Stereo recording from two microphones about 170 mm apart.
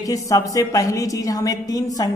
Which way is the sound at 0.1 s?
20° left (ahead or behind).